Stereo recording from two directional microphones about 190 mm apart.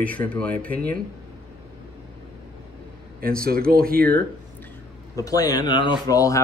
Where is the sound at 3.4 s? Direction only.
50° right (ahead or behind).